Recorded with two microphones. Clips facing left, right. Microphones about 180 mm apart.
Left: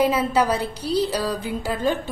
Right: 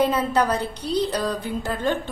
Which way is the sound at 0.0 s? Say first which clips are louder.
Left 1 dB; 5° left (ahead or behind).